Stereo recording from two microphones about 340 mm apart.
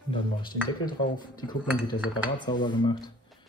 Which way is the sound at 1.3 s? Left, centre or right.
Centre.